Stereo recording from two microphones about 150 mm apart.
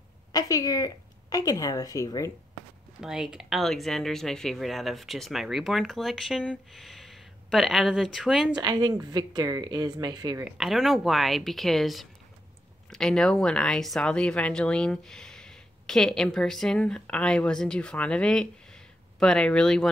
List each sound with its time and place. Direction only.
0.3 s speech: 25° left (ahead or behind)
3.0 s speech: 5° right (ahead or behind)
8.5 s a woman's voice: 30° right (ahead or behind)
10.4 s speech: centre (ahead or behind)